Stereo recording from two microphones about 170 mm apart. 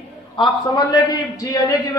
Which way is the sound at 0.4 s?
25° left (ahead or behind).